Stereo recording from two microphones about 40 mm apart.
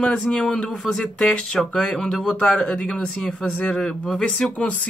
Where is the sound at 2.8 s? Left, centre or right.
Left.